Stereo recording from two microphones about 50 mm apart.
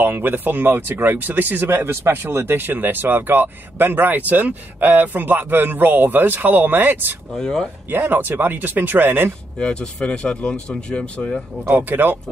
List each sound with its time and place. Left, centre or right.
0.0 s speech: right
7.3 s speech: centre
7.9 s speech: right
9.6 s speech: left
11.7 s speech: right